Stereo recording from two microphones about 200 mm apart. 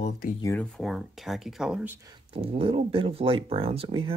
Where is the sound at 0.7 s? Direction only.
Centre (ahead or behind).